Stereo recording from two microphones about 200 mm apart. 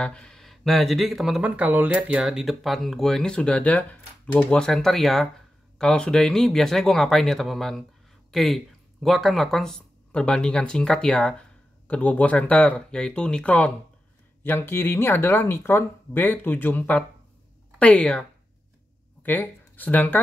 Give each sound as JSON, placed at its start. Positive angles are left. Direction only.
{"t": 0.0, "sound": "speech", "side_deg": 5}
{"t": 19.2, "sound": "speech", "side_deg": 10}